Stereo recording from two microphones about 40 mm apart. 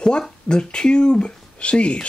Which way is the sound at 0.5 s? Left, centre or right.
Left.